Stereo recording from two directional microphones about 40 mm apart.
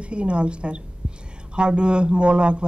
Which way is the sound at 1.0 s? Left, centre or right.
Right.